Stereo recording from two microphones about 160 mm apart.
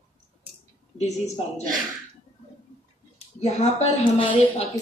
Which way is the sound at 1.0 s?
45° left (ahead or behind).